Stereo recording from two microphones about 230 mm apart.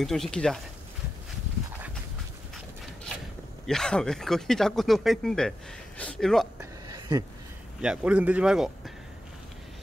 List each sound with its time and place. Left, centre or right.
0.0 s speech: centre
3.6 s speech: centre
6.6 s a sound: centre
7.8 s speech: centre